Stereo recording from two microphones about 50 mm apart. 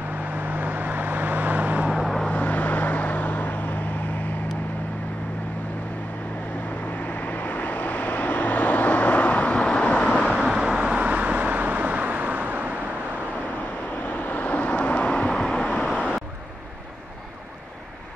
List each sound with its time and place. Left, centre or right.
0.2 s vehicle: right
1.9 s vehicle: centre
2.4 s vehicle: left
7.0 s vehicle: left
10.1 s vehicle: centre
10.4 s vehicle: centre; by 12.7 s right
14.0 s vehicle: left